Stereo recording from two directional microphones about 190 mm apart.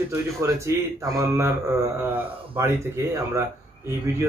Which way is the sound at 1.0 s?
15° right (ahead or behind).